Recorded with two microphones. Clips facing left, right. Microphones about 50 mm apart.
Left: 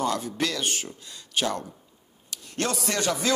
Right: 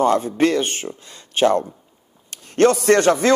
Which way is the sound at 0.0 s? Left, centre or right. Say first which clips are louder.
Right 10 dB; right.